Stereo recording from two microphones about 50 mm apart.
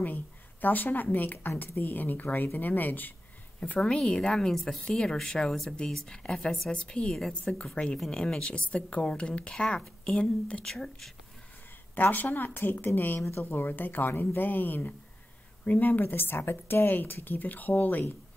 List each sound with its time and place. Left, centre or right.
0.0 s a woman's voice: left
3.6 s a woman's voice: left
3.9 s speech: centre
6.7 s a woman's voice: centre
7.2 s speech: centre
7.5 s a woman's voice: left
11.9 s speech: left